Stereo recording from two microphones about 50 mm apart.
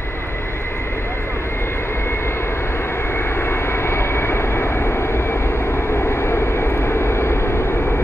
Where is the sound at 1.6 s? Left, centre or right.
Left.